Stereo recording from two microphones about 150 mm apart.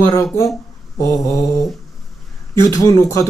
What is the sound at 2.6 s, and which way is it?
Speech, 20° left (ahead or behind).